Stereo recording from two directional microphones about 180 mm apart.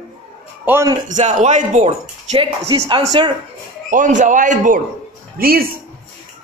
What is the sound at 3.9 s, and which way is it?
A man's voice, 45° right (ahead or behind).